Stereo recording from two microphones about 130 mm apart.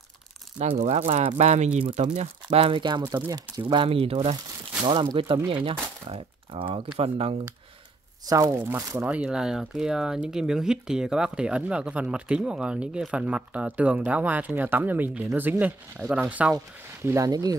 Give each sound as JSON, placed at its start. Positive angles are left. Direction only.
{"t": 0.6, "sound": "speech", "side_deg": -60}
{"t": 2.4, "sound": "speech", "side_deg": -40}
{"t": 3.6, "sound": "speech", "side_deg": -45}
{"t": 4.8, "sound": "speech", "side_deg": -35}
{"t": 8.5, "sound": "speech", "side_deg": -20}
{"t": 9.0, "sound": "speech", "side_deg": -10}
{"t": 17.0, "sound": "speech", "side_deg": -25}